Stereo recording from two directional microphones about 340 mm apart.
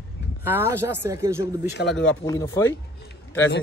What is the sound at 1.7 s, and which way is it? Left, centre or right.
Speech, left.